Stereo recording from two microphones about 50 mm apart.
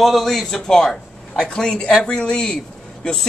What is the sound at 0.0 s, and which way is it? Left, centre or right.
A man's voice, centre.